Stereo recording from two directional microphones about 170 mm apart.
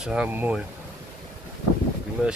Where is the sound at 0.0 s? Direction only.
5° right (ahead or behind).